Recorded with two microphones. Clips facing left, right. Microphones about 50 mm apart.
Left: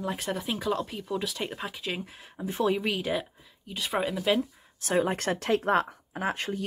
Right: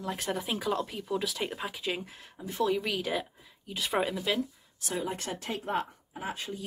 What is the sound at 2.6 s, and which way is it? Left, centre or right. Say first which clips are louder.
Speech: left 2 dB; centre.